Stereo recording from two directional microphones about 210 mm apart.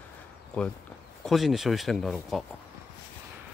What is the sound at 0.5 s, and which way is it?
Speech, 5° left (ahead or behind).